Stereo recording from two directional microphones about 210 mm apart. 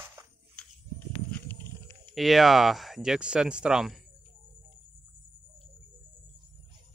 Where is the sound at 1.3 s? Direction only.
10° left (ahead or behind).